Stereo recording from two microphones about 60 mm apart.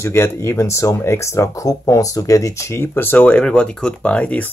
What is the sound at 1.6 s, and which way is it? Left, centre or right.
Speech, left.